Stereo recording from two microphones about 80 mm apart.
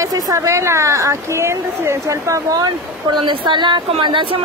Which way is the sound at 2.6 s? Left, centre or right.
Right.